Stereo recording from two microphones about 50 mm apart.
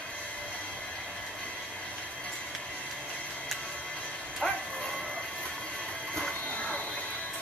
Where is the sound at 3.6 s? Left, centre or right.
Left.